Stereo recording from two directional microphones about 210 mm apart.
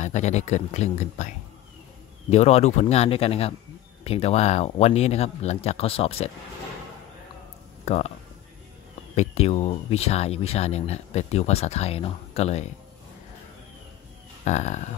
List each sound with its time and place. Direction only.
0.0 s speech: 35° left (ahead or behind)
2.3 s speech: 30° left (ahead or behind)
7.8 s speech: 30° left (ahead or behind)
9.1 s speech: 30° left (ahead or behind)
14.4 s speech: 35° left (ahead or behind)